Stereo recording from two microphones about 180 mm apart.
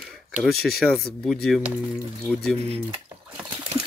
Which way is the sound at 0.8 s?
Centre (ahead or behind).